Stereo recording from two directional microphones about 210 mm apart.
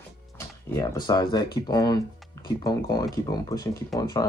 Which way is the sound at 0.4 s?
15° left (ahead or behind).